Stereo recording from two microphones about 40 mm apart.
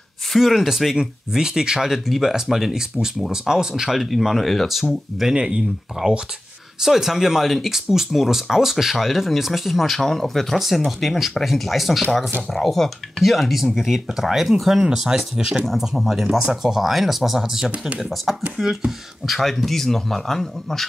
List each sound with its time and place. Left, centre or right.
0.4 s speech: centre
1.9 s speech: centre
4.8 s speech: centre
13.7 s speech: centre